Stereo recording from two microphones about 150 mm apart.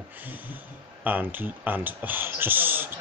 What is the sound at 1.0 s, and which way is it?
Speech, 10° right (ahead or behind).